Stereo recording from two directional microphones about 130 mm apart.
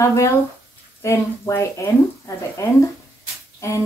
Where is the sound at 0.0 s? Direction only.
25° left (ahead or behind).